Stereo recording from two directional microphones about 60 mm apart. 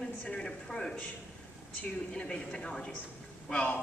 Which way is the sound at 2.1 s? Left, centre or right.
Centre.